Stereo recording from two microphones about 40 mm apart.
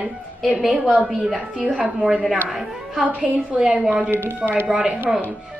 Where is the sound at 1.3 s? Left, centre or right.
Right.